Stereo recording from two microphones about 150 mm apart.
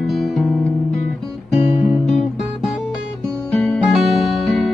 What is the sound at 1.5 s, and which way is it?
Guitar, 45° left (ahead or behind).